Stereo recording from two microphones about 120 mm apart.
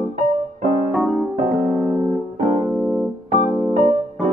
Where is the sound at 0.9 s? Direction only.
Centre (ahead or behind).